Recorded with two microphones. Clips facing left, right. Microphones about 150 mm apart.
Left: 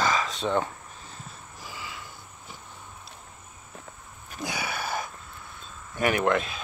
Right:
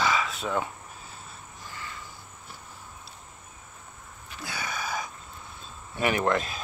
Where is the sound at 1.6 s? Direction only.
10° left (ahead or behind).